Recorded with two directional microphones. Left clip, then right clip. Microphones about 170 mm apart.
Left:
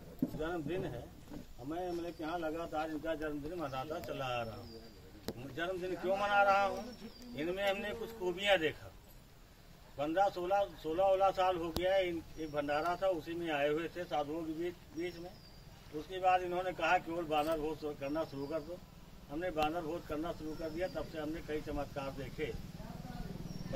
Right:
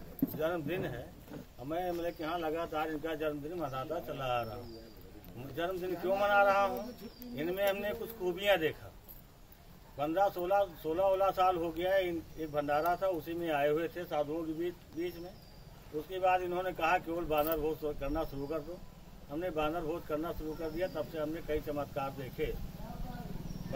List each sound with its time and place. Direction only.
0.4 s a man's voice: 10° right (ahead or behind)
5.6 s a man's voice: 10° right (ahead or behind)
9.9 s a man's voice: 10° right (ahead or behind)